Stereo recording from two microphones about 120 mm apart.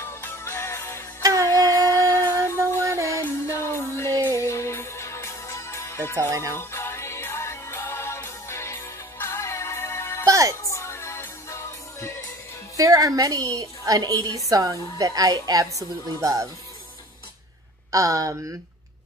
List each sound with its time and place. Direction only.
0.0 s music: 20° left (ahead or behind)
1.2 s music: 30° right (ahead or behind)
1.5 s music: 25° left (ahead or behind)
6.1 s speech: 25° right (ahead or behind)
6.5 s music: 20° left (ahead or behind)
10.2 s music: 25° right (ahead or behind)
10.6 s music: 25° left (ahead or behind)
12.7 s a woman's voice: 30° right (ahead or behind)
17.9 s speech: 30° right (ahead or behind)